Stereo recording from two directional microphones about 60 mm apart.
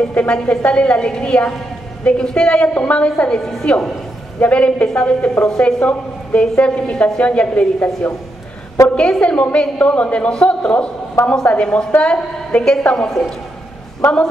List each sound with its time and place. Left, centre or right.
0.1 s a woman's voice: left
3.3 s a woman's voice: centre